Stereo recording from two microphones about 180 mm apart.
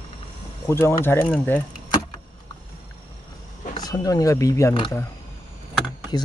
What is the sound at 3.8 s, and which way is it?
Speech, 20° left (ahead or behind).